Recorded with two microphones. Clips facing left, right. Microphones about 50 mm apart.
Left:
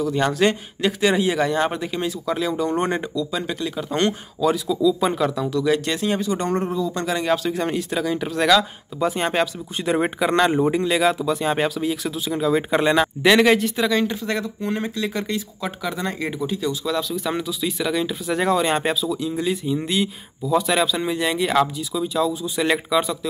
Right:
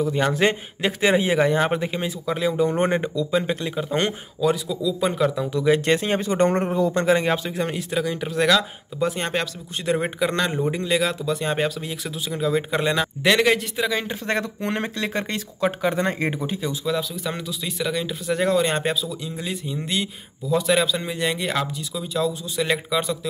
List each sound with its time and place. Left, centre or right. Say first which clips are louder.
0.0 s a man's voice: left 1 dB; right
3.9 s speech: left 4 dB; centre
4.5 s speech: left 4 dB; centre
5.3 s a man's voice: even; centre
5.9 s speech: right 1 dB; right
7.5 s a man's voice: left 1 dB; centre; by 10.7 s left
10.9 s speech: left 3 dB; centre
14.2 s speech: even; right
14.6 s speech: left 1 dB; right
16.6 s speech: left 1 dB; centre
17.1 s speech: left 4 dB; centre